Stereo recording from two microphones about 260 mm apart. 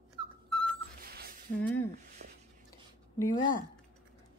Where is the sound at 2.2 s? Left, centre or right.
Right.